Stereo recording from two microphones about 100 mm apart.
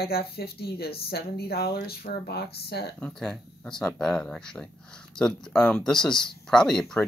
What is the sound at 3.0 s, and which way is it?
Speech, 5° left (ahead or behind).